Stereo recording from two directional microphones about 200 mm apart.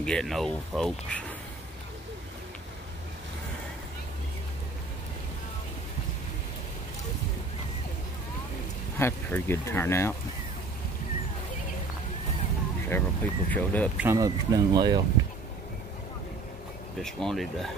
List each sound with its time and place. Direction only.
0.0 s speech: 5° left (ahead or behind)
8.9 s speech: 10° left (ahead or behind)
12.9 s speech: 10° left (ahead or behind)
13.9 s speech: 15° right (ahead or behind)
17.0 s speech: centre (ahead or behind)